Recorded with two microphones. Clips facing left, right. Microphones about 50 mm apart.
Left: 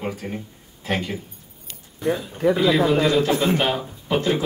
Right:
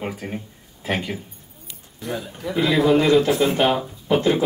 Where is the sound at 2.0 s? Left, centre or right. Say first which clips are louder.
Left 8 dB; left.